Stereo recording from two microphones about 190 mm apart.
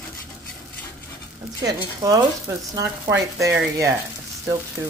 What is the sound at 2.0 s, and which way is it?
Speech, 20° right (ahead or behind).